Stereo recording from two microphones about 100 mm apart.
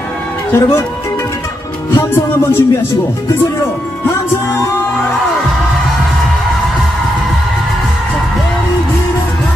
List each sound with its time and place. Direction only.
0.5 s music: 25° left (ahead or behind)
1.9 s music: 25° left (ahead or behind)